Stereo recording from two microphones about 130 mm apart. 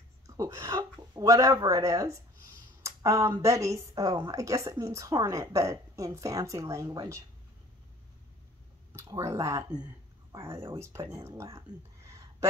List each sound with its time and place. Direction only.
0.4 s a woman's voice: 25° right (ahead or behind)
2.8 s a sound: 25° right (ahead or behind)
3.4 s a woman's voice: 25° right (ahead or behind)
8.9 s a woman's voice: 20° right (ahead or behind)
10.8 s a woman's voice: 20° right (ahead or behind)